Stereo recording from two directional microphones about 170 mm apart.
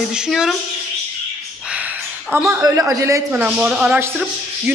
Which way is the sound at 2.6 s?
20° right (ahead or behind).